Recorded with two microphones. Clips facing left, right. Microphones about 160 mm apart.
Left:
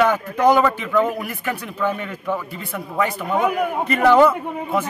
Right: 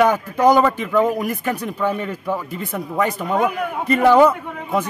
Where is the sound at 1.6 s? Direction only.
15° right (ahead or behind).